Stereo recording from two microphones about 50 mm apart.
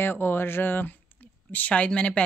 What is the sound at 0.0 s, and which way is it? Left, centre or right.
Speech, left.